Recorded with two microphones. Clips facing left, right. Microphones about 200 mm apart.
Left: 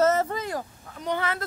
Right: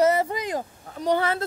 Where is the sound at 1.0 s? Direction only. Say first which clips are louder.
Right 5 dB; 35° right (ahead or behind).